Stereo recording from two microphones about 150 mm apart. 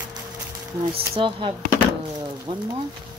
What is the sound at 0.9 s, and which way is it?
Speech, 35° right (ahead or behind).